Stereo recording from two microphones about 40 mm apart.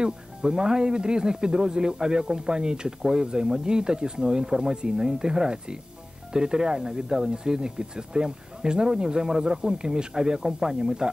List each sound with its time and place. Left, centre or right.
0.0 s speech: centre